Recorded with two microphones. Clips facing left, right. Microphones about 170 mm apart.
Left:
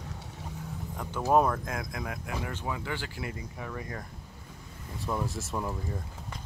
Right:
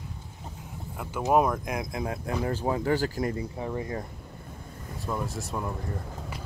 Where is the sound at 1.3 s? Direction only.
10° right (ahead or behind); by 3.3 s 40° right (ahead or behind).